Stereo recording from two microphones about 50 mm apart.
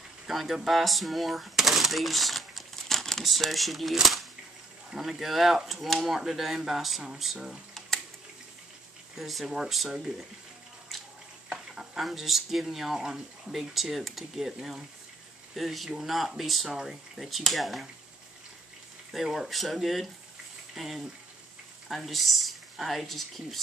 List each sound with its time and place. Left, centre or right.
0.3 s speech: centre
9.2 s speech: centre
10.9 s water tap: centre
11.4 s stir: centre
12.0 s speech: centre
19.1 s speech: centre